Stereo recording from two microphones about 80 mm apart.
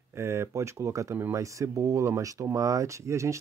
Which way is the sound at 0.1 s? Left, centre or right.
Right.